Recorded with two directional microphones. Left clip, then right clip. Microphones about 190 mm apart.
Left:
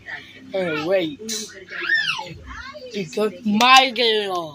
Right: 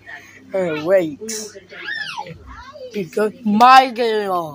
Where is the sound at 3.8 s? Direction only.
40° right (ahead or behind).